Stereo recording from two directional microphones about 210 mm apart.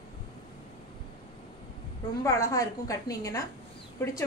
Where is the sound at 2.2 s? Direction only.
15° left (ahead or behind).